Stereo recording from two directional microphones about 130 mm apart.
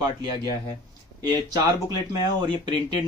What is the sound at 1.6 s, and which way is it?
Speech, 30° right (ahead or behind).